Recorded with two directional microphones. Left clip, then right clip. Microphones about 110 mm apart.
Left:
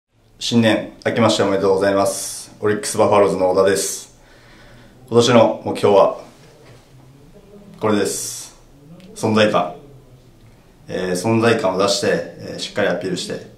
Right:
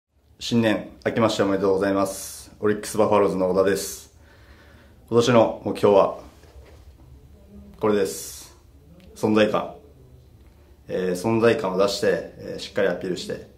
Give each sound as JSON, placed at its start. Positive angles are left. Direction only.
{"t": 0.4, "sound": "speech", "side_deg": 25}
{"t": 5.1, "sound": "speech", "side_deg": 25}
{"t": 7.8, "sound": "speech", "side_deg": 20}
{"t": 10.9, "sound": "speech", "side_deg": 25}